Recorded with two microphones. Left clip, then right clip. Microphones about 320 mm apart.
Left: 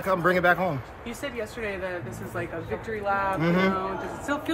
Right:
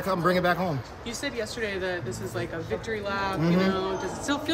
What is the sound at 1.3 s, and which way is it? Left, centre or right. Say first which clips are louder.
Speech: right 1 dB; left.